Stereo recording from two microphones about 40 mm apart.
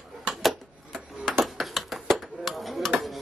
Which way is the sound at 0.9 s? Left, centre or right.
Centre.